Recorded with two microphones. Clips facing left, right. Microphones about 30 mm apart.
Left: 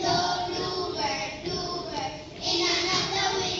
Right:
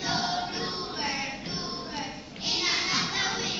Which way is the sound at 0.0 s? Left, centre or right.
Left.